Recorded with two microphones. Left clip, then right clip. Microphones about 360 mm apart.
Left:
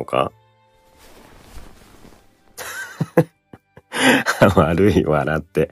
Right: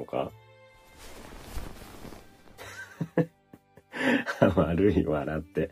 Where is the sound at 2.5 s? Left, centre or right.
Left.